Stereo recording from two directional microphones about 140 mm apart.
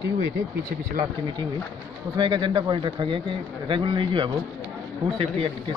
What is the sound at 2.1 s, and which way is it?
Speech, 35° right (ahead or behind).